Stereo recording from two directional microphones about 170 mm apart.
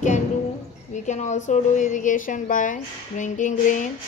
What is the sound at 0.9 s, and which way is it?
A woman's voice, 45° left (ahead or behind).